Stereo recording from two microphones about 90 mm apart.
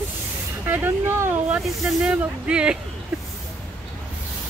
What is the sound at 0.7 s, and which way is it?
Speech, 25° right (ahead or behind).